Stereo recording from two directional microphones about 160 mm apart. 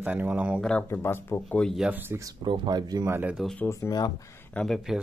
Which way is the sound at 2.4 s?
30° right (ahead or behind).